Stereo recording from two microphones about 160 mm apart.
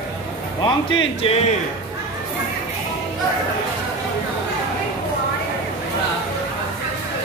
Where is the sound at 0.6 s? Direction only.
30° left (ahead or behind).